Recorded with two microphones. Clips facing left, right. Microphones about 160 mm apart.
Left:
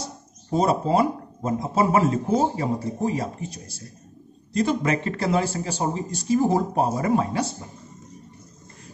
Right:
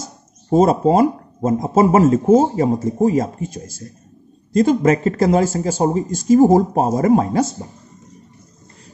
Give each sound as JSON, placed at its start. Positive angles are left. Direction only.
{"t": 0.5, "sound": "speech", "side_deg": -45}